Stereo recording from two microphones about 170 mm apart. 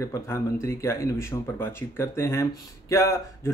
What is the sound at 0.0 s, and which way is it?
Speech, 20° left (ahead or behind).